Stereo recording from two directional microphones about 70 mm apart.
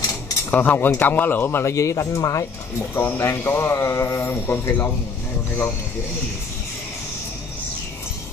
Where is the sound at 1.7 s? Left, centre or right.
Left.